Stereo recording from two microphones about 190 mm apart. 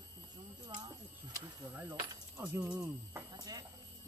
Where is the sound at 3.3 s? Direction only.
20° right (ahead or behind).